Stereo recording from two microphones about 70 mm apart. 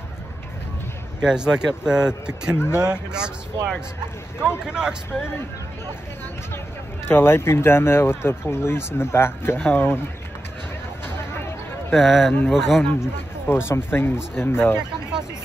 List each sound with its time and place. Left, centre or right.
1.2 s speech: centre
2.5 s speech: left
2.9 s speech: centre
4.6 s speech: centre
7.1 s speech: left
11.9 s speech: centre
13.5 s speech: left